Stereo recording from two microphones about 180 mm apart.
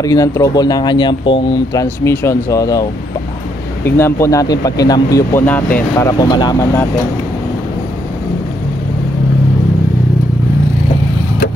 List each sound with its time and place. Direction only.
0.0 s speech: 20° left (ahead or behind)